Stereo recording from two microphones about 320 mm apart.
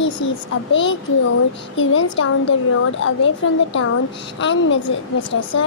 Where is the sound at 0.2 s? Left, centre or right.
Left.